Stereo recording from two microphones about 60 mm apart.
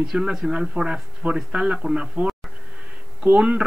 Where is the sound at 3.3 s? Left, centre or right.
Centre.